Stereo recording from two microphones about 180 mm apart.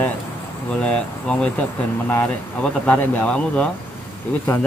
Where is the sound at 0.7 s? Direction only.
5° left (ahead or behind).